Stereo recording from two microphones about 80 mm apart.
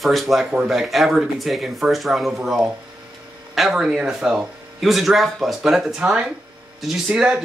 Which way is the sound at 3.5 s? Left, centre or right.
Centre.